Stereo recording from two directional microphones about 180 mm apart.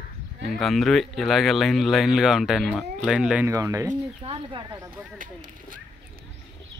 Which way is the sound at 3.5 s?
20° right (ahead or behind).